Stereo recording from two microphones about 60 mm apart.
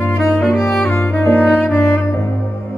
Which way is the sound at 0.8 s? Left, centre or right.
Left.